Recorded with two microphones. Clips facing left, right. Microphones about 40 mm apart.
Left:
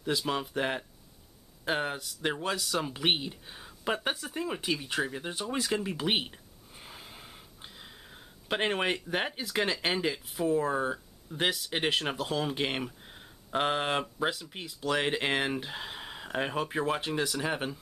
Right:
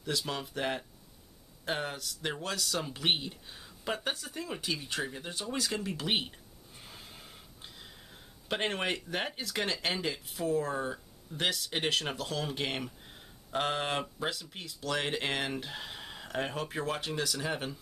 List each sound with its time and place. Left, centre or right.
0.3 s speech: centre